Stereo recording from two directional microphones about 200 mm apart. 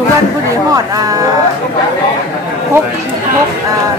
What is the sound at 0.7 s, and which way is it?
Speech, 20° right (ahead or behind).